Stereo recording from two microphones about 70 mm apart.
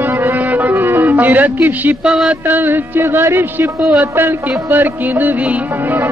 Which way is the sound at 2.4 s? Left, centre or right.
Right.